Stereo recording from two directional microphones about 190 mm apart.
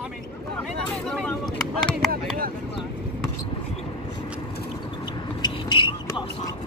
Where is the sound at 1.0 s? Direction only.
Centre (ahead or behind).